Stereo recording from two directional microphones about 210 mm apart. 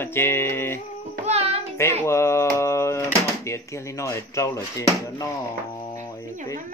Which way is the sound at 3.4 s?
15° left (ahead or behind).